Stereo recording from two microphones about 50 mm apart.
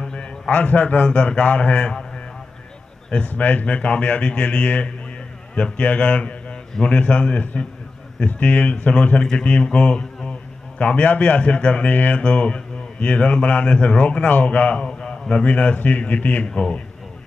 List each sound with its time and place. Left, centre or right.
0.0 s a man's voice: centre
3.3 s a man's voice: left
14.9 s a sound: centre
15.4 s speech: left
16.4 s a man's voice: centre